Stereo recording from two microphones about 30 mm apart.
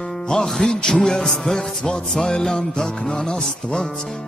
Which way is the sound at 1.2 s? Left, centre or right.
Centre.